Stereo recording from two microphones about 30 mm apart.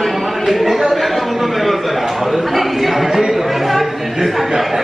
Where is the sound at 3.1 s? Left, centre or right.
Centre.